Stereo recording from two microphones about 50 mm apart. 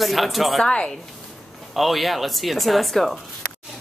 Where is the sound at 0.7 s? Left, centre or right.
Centre.